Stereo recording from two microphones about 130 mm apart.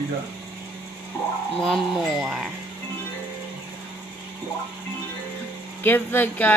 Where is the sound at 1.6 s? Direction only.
5° left (ahead or behind).